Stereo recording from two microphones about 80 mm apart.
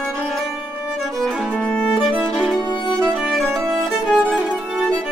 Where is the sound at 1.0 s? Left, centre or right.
Centre.